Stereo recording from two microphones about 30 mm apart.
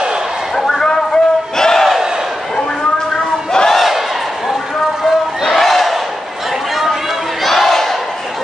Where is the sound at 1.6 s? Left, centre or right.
Centre.